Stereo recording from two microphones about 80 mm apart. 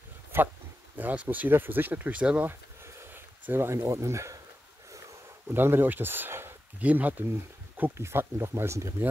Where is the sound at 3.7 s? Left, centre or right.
Right.